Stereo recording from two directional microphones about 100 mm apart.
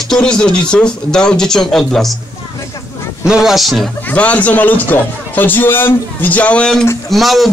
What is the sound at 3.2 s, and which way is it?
Speech, 5° right (ahead or behind).